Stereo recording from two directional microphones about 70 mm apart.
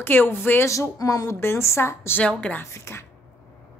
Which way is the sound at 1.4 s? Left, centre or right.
Left.